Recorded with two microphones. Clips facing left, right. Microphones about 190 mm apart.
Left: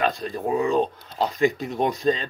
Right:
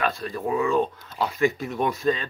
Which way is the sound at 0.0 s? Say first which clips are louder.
Left 2 dB; 20° left (ahead or behind).